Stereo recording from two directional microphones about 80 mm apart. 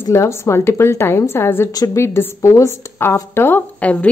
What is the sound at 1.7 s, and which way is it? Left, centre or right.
Speech, left.